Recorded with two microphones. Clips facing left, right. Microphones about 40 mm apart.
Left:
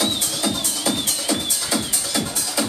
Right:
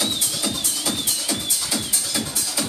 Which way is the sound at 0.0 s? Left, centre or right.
Centre.